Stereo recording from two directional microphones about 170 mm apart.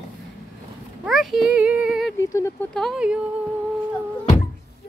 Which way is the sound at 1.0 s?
Centre (ahead or behind).